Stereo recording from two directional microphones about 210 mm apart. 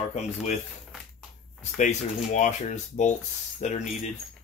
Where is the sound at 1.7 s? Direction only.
35° left (ahead or behind).